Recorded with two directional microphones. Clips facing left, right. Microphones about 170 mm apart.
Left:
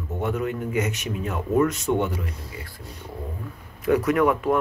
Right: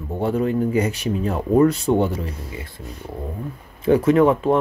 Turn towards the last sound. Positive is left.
turn(degrees=-30)  # may be behind; listen again after turning